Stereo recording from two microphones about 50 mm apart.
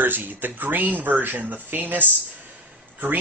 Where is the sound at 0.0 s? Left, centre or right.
Right.